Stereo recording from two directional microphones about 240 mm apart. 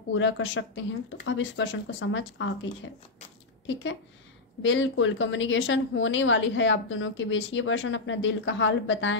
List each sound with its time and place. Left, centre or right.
0.1 s a woman's voice: left